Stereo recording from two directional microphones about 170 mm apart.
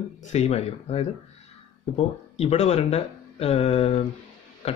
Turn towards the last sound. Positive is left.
turn(degrees=40)  # may be behind; listen again after turning